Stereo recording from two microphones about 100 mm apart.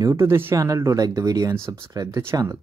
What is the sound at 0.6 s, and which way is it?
Speech, 35° right (ahead or behind).